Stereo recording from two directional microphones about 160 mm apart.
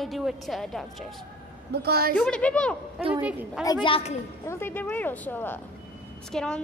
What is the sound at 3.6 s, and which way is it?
Speech, 25° left (ahead or behind).